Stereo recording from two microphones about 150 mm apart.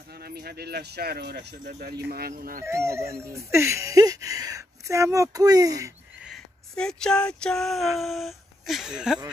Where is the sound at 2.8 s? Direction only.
20° right (ahead or behind).